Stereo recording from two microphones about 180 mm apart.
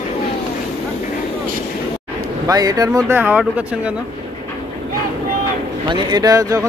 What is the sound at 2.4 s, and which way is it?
Speech, 20° right (ahead or behind).